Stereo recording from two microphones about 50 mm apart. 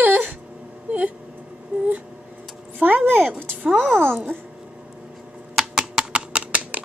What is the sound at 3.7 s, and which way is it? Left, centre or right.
Babbling, right.